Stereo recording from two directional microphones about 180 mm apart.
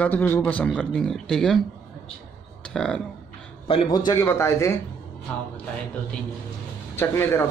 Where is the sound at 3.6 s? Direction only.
25° left (ahead or behind).